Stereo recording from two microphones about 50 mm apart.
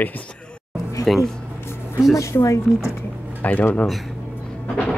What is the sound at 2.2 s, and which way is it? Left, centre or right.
Speech, left.